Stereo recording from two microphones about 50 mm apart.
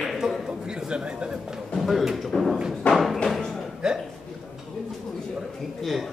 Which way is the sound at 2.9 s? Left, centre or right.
Centre.